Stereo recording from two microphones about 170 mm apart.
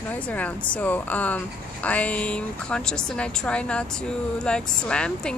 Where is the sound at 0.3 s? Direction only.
10° left (ahead or behind).